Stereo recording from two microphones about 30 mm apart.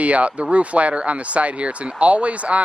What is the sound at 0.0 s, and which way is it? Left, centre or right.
Speech, right.